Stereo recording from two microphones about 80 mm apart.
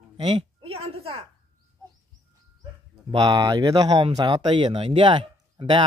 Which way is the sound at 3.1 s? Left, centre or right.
Right.